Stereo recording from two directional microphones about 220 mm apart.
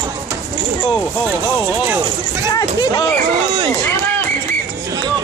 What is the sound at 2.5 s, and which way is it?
Speech, 15° left (ahead or behind).